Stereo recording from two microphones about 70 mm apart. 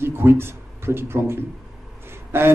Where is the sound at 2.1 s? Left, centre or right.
Right.